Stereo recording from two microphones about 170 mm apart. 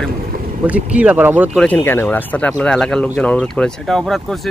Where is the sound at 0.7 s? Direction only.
10° right (ahead or behind).